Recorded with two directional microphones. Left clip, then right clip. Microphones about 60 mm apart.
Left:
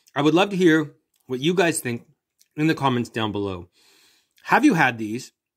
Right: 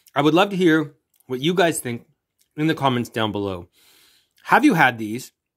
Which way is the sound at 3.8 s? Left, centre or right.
Right.